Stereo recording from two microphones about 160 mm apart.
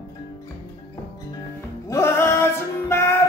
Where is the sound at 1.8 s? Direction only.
15° left (ahead or behind).